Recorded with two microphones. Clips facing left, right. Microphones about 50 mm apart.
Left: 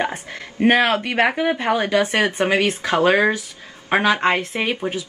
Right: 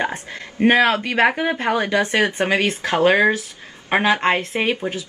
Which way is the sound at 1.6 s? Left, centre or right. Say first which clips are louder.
Even; right.